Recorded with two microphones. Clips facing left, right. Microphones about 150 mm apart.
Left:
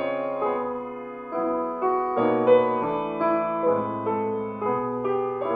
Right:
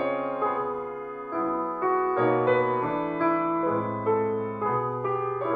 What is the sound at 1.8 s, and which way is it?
Music, 15° left (ahead or behind).